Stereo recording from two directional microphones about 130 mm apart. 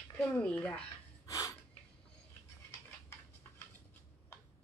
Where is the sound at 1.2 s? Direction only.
25° left (ahead or behind).